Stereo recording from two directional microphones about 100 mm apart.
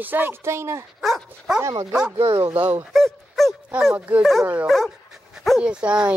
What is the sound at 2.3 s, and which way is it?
Speech, 45° right (ahead or behind).